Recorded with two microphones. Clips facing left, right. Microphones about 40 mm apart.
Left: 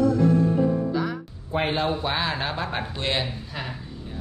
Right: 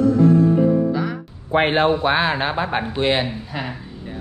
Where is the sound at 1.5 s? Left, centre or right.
Right.